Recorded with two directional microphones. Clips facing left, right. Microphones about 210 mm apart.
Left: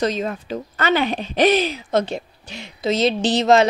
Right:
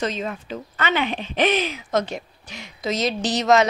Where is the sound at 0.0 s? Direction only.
40° left (ahead or behind).